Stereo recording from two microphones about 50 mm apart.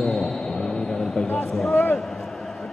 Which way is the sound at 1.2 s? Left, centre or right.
Left.